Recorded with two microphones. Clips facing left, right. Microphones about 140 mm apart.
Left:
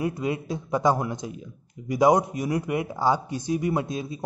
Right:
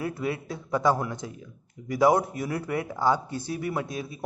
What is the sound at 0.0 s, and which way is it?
A woman's voice, 20° left (ahead or behind).